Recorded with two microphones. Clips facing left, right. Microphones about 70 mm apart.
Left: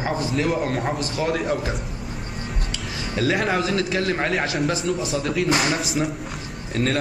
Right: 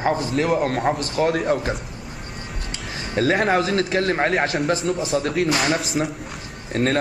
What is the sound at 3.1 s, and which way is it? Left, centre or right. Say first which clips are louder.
Speech: right 3 dB; right.